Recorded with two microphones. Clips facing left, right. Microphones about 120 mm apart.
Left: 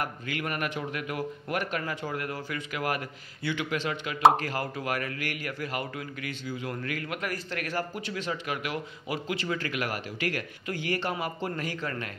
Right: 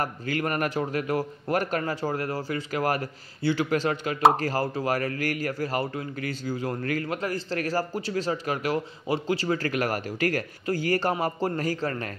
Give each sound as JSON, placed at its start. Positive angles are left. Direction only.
{"t": 0.0, "sound": "a man's voice", "side_deg": -40}